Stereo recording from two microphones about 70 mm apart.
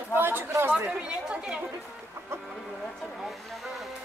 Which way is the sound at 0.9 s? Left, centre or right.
Centre.